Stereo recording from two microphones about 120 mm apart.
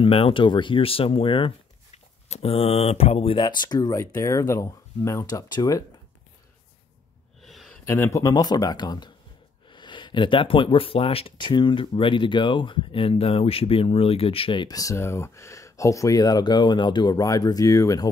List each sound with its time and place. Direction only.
0.0 s speech: 50° left (ahead or behind)
2.2 s speech: 60° left (ahead or behind)
3.4 s speech: 35° left (ahead or behind)
4.0 s speech: 25° left (ahead or behind)
7.4 s a sound: centre (ahead or behind)
7.8 s speech: 20° left (ahead or behind)
8.2 s speech: 35° left (ahead or behind)
14.7 s speech: 30° left (ahead or behind)